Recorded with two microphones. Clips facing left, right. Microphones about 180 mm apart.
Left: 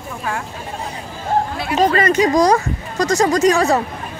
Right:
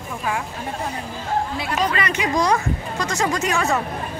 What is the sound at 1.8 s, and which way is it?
Speech, 40° left (ahead or behind).